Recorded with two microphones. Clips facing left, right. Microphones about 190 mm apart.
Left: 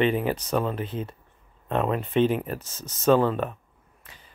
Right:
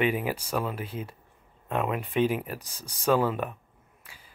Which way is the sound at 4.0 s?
10° right (ahead or behind).